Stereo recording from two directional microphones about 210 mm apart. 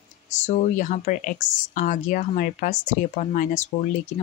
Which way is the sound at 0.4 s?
35° left (ahead or behind).